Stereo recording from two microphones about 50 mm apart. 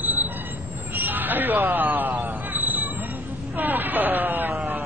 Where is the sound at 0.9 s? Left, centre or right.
Right.